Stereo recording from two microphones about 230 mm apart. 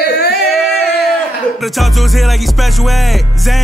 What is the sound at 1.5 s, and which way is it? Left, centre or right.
Music, centre.